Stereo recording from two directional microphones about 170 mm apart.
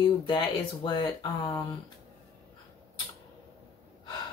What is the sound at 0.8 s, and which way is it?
Speech, 25° left (ahead or behind).